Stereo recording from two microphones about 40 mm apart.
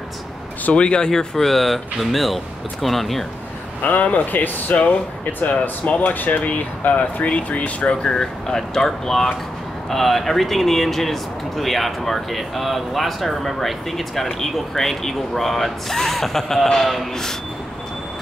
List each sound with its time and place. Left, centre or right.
0.7 s speech: left; by 3.3 s centre
3.8 s speech: left; by 17.4 s centre